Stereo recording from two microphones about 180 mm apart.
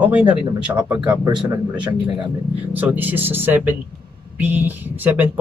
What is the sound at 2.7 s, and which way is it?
Speech, 10° right (ahead or behind).